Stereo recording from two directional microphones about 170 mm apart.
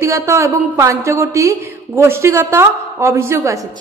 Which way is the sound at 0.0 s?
15° right (ahead or behind).